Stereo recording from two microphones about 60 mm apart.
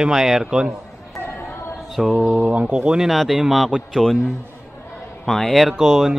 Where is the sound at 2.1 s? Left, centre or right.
Centre.